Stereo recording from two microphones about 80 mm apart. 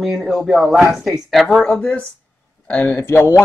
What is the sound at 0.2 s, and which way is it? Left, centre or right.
Speech, centre.